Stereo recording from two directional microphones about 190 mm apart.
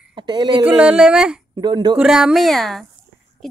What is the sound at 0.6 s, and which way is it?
Speech, 5° right (ahead or behind).